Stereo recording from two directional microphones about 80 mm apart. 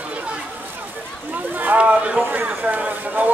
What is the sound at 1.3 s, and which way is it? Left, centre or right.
Boat, right.